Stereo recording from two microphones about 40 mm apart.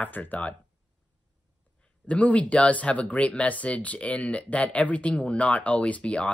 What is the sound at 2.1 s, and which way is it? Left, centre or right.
Speech, left.